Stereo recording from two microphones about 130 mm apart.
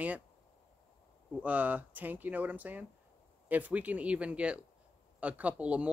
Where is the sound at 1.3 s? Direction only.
10° right (ahead or behind).